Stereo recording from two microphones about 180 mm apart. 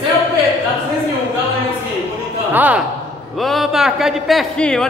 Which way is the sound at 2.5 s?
10° right (ahead or behind).